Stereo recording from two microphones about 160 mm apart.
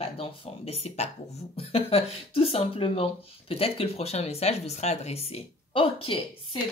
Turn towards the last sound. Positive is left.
turn(degrees=35)  # may be behind; listen again after turning